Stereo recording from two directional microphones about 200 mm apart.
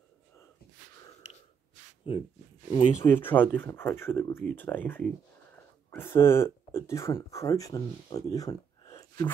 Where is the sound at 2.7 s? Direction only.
20° left (ahead or behind).